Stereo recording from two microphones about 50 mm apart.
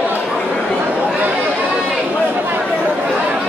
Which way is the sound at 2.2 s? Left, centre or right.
Right.